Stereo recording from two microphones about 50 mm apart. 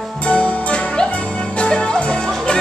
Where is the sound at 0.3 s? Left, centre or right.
Left.